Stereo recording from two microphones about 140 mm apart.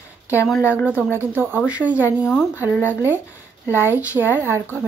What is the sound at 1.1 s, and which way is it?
Speech, 15° right (ahead or behind).